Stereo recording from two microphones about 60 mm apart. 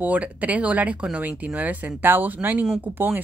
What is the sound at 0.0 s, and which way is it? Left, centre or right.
Speech, right.